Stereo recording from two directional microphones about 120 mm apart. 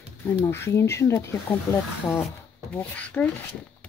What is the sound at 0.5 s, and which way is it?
Speech, 20° left (ahead or behind).